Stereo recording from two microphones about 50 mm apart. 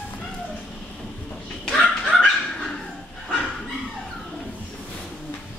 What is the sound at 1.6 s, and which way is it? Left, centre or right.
Chicken, centre.